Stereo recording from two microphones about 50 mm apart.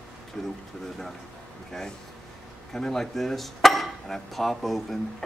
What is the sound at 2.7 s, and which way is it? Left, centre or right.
Speech, centre.